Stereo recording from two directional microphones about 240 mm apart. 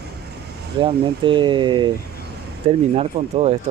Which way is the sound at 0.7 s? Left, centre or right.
Right.